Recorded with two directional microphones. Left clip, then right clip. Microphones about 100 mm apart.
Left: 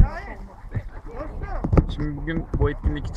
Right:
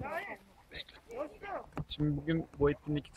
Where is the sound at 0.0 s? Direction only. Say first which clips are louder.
Left 6 dB; 70° right (ahead or behind).